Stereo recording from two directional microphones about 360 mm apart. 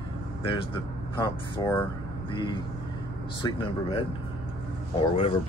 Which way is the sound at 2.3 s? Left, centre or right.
Centre.